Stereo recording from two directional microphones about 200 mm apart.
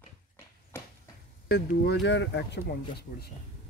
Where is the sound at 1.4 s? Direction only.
55° left (ahead or behind).